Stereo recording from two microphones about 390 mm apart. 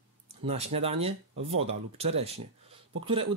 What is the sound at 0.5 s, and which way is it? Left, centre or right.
Speech, centre.